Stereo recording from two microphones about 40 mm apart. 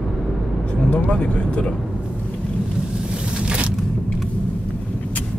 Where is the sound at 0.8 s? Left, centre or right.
Left.